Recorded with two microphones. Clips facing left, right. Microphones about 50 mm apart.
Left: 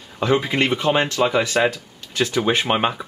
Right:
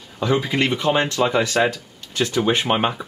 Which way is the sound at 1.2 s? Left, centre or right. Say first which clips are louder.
Even; centre.